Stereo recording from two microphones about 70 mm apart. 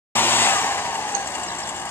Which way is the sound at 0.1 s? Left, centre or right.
Left.